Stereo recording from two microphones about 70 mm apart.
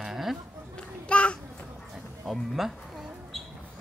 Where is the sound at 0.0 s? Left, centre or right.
Centre.